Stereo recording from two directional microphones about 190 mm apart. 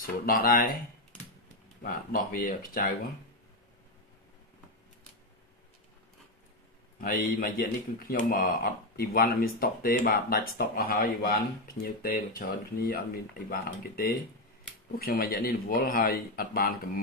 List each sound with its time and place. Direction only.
0.0 s speech: 50° left (ahead or behind)
1.8 s speech: 50° left (ahead or behind)
7.0 s speech: 50° left (ahead or behind)